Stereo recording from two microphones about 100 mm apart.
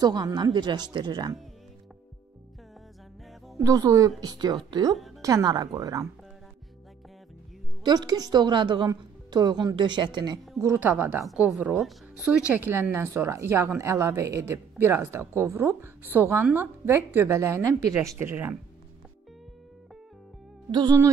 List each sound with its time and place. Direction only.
0.0 s a woman's voice: 40° right (ahead or behind)
3.5 s a woman's voice: 35° right (ahead or behind)
5.2 s speech: 35° right (ahead or behind)
7.8 s a woman's voice: 45° right (ahead or behind)
10.8 s speech: 15° right (ahead or behind); by 17.9 s 35° right (ahead or behind)
18.0 s speech: 25° right (ahead or behind)
20.7 s a woman's voice: 45° right (ahead or behind)